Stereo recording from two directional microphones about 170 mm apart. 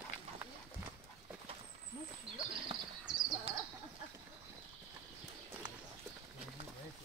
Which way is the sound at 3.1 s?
Centre (ahead or behind).